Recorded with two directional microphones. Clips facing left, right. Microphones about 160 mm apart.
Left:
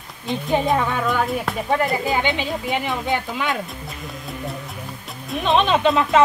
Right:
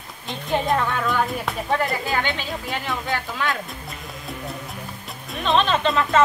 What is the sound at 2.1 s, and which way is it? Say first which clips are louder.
Speech: left 3 dB; 15° left (ahead or behind).